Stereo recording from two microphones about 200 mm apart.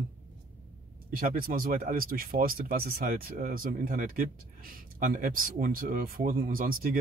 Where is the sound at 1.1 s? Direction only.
45° right (ahead or behind).